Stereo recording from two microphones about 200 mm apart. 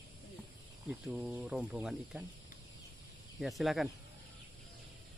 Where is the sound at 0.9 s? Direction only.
Centre (ahead or behind).